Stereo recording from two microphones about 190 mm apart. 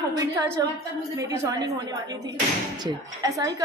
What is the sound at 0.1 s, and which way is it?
A woman's voice, 20° right (ahead or behind).